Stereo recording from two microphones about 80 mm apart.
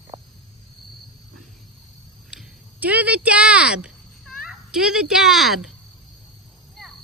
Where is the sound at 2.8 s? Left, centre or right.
Centre.